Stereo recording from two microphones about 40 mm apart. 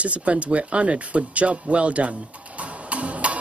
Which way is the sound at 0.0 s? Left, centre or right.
Right.